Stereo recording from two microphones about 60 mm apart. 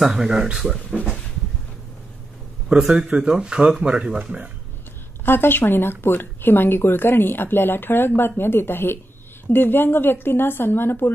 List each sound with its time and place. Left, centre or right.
0.0 s a man's voice: centre
2.7 s a man's voice: centre
5.2 s speech: left